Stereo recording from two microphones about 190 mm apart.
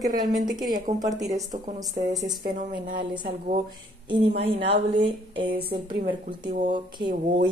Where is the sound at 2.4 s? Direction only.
50° right (ahead or behind).